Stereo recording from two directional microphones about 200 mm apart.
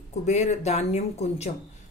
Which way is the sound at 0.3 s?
35° left (ahead or behind).